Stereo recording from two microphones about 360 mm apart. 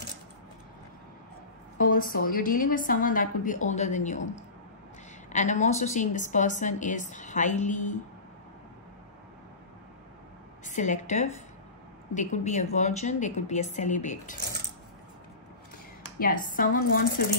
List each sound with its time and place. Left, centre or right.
1.8 s a woman's voice: left
10.6 s a woman's voice: centre
16.2 s a woman's voice: left